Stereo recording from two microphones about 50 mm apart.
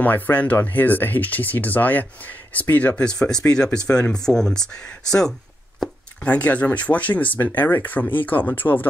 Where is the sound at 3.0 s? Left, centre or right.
Centre.